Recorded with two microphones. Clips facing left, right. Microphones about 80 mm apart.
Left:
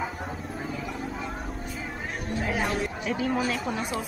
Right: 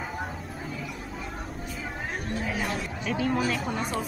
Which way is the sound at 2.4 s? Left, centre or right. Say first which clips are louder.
Left 5 dB; left.